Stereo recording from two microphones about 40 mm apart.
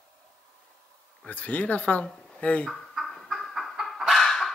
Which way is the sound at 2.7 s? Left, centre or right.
Centre.